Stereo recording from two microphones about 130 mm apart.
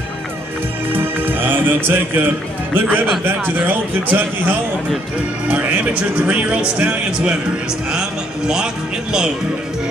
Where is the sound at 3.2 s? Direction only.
15° right (ahead or behind).